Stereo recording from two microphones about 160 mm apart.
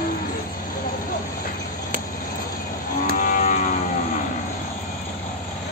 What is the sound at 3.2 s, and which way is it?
Livestock, 50° left (ahead or behind).